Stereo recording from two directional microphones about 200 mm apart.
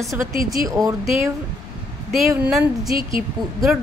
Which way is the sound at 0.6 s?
15° right (ahead or behind).